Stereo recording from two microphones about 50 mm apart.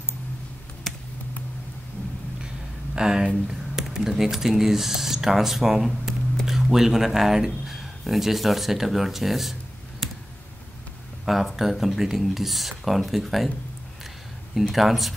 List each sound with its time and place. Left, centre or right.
0.9 s a sound: centre
3.0 s speech: centre
11.2 s speech: centre
14.5 s speech: centre